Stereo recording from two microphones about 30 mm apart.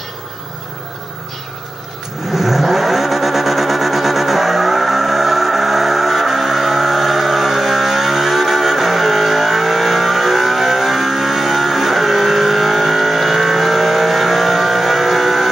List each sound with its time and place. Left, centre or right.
2.3 s vehicle: centre